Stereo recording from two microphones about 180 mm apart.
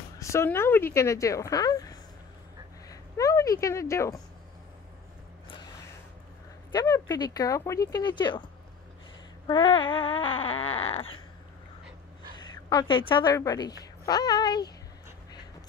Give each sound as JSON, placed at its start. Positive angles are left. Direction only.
{"t": 0.2, "sound": "a woman's voice", "side_deg": 15}
{"t": 6.7, "sound": "speech", "side_deg": 20}
{"t": 9.5, "sound": "a sound", "side_deg": 25}
{"t": 12.6, "sound": "speech", "side_deg": 25}